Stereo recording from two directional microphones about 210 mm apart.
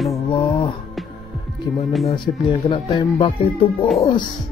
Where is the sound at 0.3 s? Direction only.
25° left (ahead or behind).